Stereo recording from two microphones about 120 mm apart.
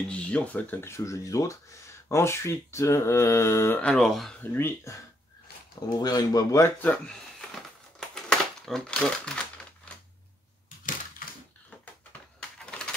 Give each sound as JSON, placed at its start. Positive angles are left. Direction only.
{"t": 0.1, "sound": "speech", "side_deg": 10}
{"t": 3.8, "sound": "speech", "side_deg": 5}
{"t": 4.4, "sound": "speech", "side_deg": 20}
{"t": 5.9, "sound": "speech", "side_deg": 30}
{"t": 6.8, "sound": "speech", "side_deg": 15}
{"t": 8.1, "sound": "typewriter", "side_deg": 5}
{"t": 12.4, "sound": "typewriter", "side_deg": 5}